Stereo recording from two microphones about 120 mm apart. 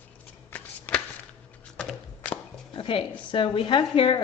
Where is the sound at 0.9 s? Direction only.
15° left (ahead or behind).